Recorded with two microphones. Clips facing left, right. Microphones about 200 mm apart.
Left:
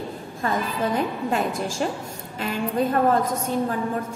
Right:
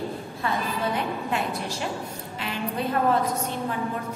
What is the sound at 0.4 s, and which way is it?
A woman's voice, 45° left (ahead or behind).